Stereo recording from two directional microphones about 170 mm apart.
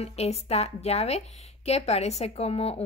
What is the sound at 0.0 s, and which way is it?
A woman's voice, 40° left (ahead or behind).